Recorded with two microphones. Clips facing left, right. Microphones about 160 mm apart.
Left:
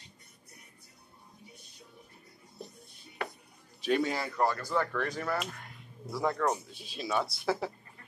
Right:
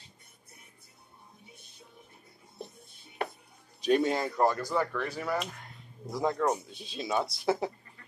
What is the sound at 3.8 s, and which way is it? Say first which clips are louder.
Speech: right 3 dB; 20° right (ahead or behind).